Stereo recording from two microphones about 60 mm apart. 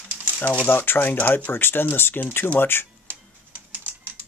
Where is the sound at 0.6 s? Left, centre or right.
Left.